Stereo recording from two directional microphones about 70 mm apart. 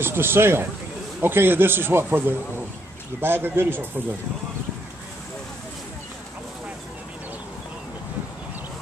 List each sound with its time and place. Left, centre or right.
0.0 s a man's voice: right